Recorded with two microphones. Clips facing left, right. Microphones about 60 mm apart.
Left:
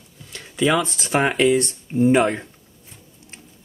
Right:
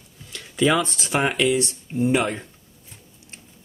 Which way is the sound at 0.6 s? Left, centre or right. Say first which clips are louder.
Even; centre.